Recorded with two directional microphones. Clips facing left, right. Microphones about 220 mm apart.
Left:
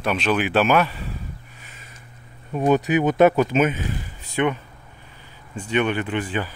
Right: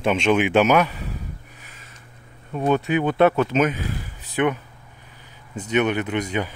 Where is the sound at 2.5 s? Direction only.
15° left (ahead or behind).